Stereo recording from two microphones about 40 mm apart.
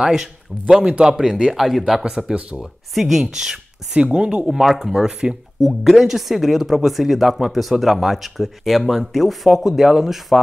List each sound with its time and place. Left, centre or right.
0.0 s speech: centre
1.3 s speech: centre
2.3 s speech: right
2.9 s speech: centre
4.0 s speech: right
4.5 s speech: centre
5.6 s speech: centre